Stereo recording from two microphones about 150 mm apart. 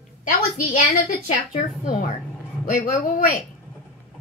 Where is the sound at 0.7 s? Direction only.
50° left (ahead or behind).